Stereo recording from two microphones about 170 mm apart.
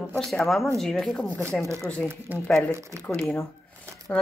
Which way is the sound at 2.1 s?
15° right (ahead or behind).